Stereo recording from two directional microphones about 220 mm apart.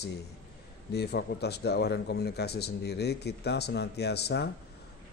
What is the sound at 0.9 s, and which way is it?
A man's voice, 45° left (ahead or behind).